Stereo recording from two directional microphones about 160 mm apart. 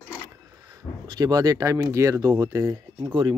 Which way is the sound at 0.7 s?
25° right (ahead or behind).